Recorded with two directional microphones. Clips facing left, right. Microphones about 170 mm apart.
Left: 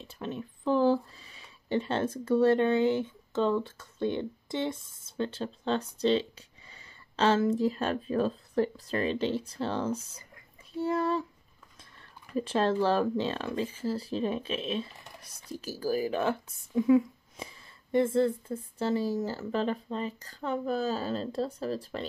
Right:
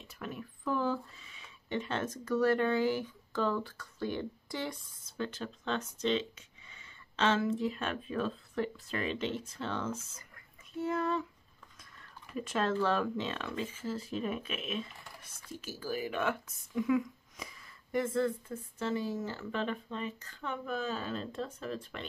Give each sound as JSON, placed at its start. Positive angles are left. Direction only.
{"t": 0.0, "sound": "speech", "side_deg": 25}
{"t": 12.4, "sound": "speech", "side_deg": 30}